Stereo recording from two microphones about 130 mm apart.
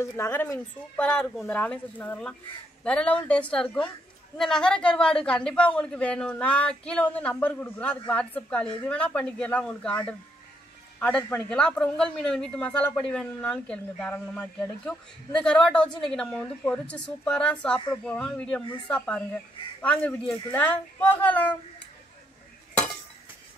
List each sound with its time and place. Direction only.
0.0 s a woman's voice: 20° left (ahead or behind)
1.2 s speech: centre (ahead or behind)
1.5 s a woman's voice: 10° left (ahead or behind)